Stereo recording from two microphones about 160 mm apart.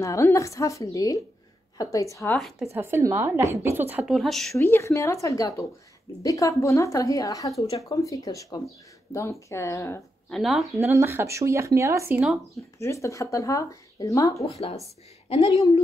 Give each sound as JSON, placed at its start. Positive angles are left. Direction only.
{"t": 0.0, "sound": "speech", "side_deg": 20}
{"t": 2.3, "sound": "speech", "side_deg": 0}
{"t": 2.7, "sound": "speech", "side_deg": -15}
{"t": 4.1, "sound": "speech", "side_deg": 0}
{"t": 4.6, "sound": "speech", "side_deg": 15}
{"t": 10.3, "sound": "speech", "side_deg": 0}
{"t": 10.7, "sound": "speech", "side_deg": -20}
{"t": 12.2, "sound": "speech", "side_deg": 0}
{"t": 12.7, "sound": "speech", "side_deg": 20}
{"t": 15.2, "sound": "a woman's voice", "side_deg": 35}